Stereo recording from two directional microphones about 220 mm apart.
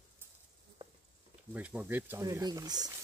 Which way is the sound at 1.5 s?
5° right (ahead or behind).